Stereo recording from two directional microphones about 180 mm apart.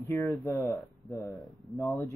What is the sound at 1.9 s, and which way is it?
Speech, 10° left (ahead or behind).